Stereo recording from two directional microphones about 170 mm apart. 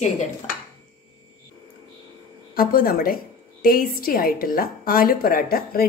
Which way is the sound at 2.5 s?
60° left (ahead or behind).